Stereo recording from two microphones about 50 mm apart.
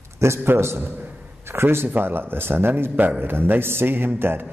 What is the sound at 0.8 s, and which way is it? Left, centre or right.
Speech, right.